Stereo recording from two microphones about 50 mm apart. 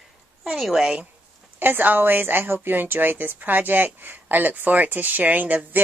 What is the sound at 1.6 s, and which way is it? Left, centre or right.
A woman's voice, right.